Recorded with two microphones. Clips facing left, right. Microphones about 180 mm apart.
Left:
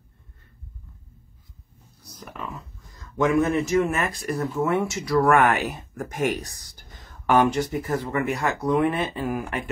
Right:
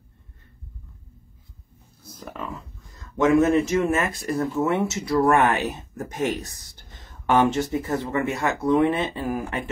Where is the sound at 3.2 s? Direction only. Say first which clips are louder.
Right 3 dB; 25° right (ahead or behind).